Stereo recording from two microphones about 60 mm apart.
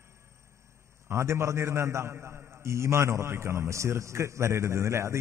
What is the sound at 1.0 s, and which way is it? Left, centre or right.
A man's voice, right.